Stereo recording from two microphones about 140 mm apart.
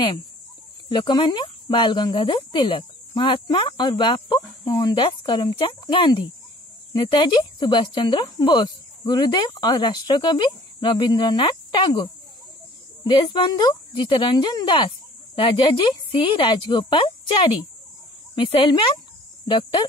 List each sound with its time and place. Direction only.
0.8 s speech: 35° left (ahead or behind)